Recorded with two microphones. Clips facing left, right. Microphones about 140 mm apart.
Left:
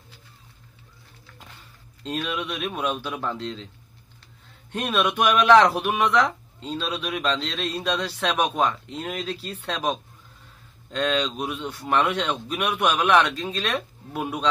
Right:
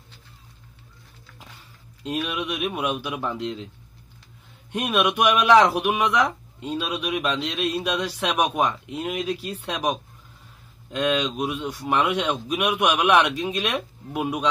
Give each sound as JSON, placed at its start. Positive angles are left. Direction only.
{"t": 2.0, "sound": "speech", "side_deg": -10}
{"t": 4.7, "sound": "speech", "side_deg": -10}